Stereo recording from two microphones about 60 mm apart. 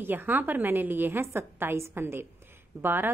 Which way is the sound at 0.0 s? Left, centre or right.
Right.